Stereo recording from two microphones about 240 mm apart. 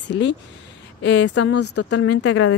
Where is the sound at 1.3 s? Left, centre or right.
Left.